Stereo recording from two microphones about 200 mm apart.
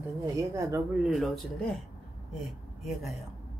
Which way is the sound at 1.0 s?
Centre (ahead or behind).